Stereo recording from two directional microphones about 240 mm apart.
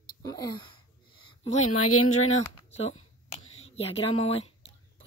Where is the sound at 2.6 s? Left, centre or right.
Left.